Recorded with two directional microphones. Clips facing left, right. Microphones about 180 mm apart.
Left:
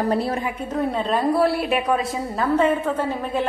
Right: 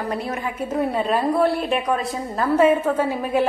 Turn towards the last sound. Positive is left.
turn(degrees=-10)  # may be behind; listen again after turning